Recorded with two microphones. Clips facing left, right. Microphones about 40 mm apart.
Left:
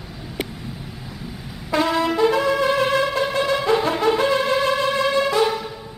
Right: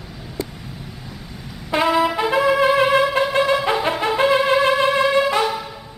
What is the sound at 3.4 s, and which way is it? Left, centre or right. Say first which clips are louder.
Music: left 1 dB; centre.